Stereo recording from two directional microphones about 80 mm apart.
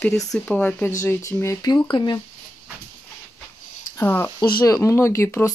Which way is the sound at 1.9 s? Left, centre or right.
Left.